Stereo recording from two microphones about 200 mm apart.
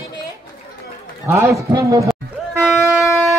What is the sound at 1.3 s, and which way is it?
Speech, 15° right (ahead or behind).